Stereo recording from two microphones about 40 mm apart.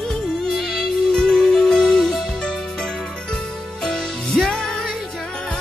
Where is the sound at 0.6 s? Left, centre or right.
Centre.